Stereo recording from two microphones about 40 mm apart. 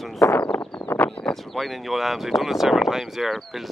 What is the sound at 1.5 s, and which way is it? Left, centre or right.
Speech, centre.